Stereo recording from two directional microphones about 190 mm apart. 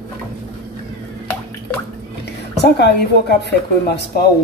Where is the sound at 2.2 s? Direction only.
60° left (ahead or behind).